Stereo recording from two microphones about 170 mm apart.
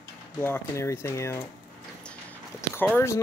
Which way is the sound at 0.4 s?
15° left (ahead or behind).